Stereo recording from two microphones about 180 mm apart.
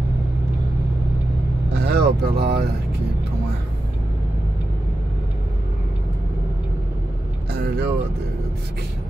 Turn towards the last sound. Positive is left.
turn(degrees=-60)  # may be behind; listen again after turning